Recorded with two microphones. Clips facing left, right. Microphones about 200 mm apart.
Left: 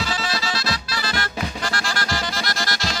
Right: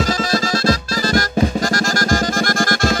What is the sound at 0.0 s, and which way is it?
Music, 45° right (ahead or behind).